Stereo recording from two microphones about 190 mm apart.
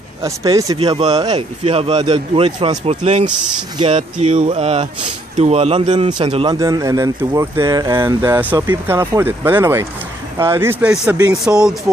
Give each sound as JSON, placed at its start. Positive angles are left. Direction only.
{"t": 0.2, "sound": "speech", "side_deg": -15}
{"t": 0.7, "sound": "speech", "side_deg": -30}